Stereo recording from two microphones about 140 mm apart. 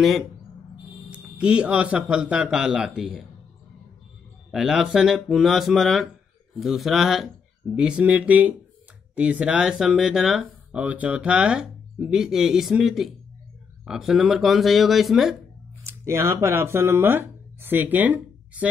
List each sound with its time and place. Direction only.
1.1 s speech: 5° right (ahead or behind)
4.5 s speech: 5° right (ahead or behind)
15.8 s speech: 20° right (ahead or behind)